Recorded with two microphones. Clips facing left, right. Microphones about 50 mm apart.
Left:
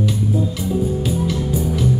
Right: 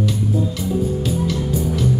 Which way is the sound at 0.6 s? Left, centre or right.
Centre.